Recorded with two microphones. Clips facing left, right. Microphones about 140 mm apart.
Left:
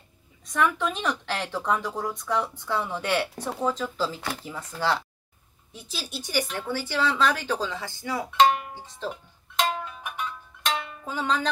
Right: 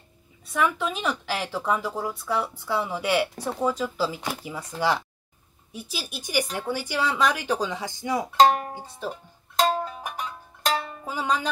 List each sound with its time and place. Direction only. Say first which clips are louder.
0.5 s speech: even; 5° right (ahead or behind)
8.3 s music: right 2 dB; 35° right (ahead or behind)
8.7 s speech: right 1 dB; 10° right (ahead or behind)
9.6 s music: right 4 dB; 35° right (ahead or behind)
11.1 s music: even; 10° right (ahead or behind)